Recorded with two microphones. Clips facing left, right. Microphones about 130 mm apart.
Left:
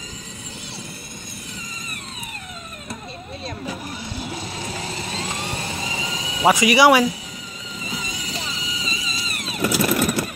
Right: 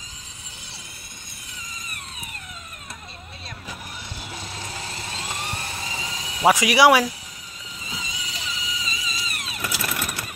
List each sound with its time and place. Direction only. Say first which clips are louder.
4.3 s vehicle: left 5 dB; 10° left (ahead or behind)
6.4 s speech: left 1 dB; centre (ahead or behind)
7.8 s vehicle: left 4 dB; 55° left (ahead or behind)
8.3 s vehicle: left 4 dB; 35° left (ahead or behind)